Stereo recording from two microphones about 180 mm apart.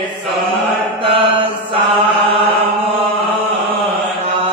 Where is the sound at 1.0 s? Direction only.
30° right (ahead or behind).